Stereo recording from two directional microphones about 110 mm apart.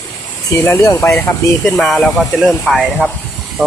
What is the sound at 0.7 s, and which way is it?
Speech, 20° left (ahead or behind).